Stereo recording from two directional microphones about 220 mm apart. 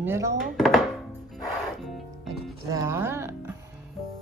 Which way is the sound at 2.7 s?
10° right (ahead or behind).